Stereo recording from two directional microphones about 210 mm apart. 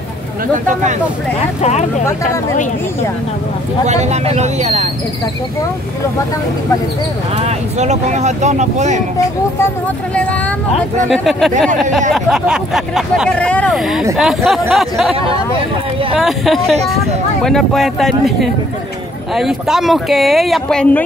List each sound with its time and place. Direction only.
1.6 s speech: 35° left (ahead or behind)
3.8 s speech: 30° right (ahead or behind)
7.3 s speech: 30° right (ahead or behind)
11.1 s speech: centre (ahead or behind)
16.2 s speech: centre (ahead or behind)